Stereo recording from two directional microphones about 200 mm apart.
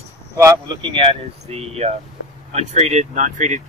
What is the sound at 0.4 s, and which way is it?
Speech, 20° right (ahead or behind).